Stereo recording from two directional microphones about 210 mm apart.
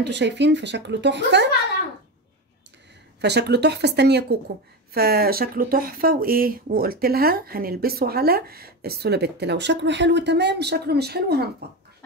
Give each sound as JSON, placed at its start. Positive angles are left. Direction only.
{"t": 0.0, "sound": "a woman's voice", "side_deg": -55}
{"t": 3.2, "sound": "speech", "side_deg": -50}